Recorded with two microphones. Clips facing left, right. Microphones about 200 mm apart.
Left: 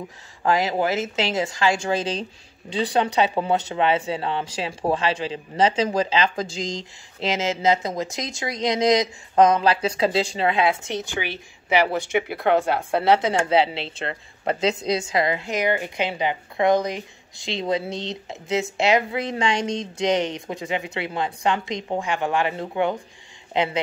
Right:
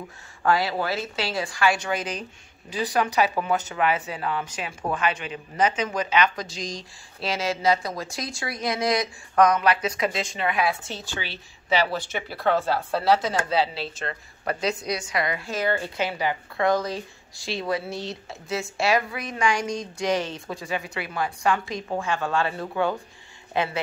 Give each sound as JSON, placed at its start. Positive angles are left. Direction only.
{"t": 0.4, "sound": "speech", "side_deg": 20}